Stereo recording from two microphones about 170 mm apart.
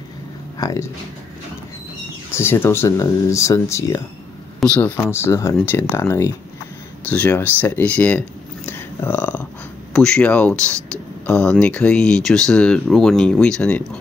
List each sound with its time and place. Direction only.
0.6 s speech: 20° left (ahead or behind)
2.3 s speech: 15° left (ahead or behind)
4.6 s speech: 5° left (ahead or behind)